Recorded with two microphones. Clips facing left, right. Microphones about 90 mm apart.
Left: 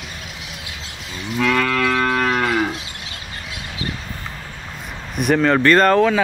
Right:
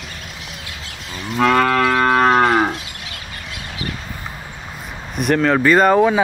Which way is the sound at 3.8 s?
30° left (ahead or behind).